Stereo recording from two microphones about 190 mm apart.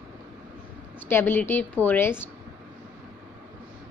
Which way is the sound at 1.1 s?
10° left (ahead or behind).